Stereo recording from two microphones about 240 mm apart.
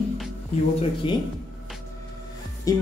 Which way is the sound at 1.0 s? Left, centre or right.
Left.